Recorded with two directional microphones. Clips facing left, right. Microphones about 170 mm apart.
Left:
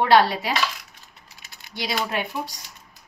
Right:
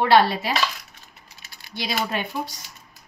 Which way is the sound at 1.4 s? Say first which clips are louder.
Even; 20° left (ahead or behind).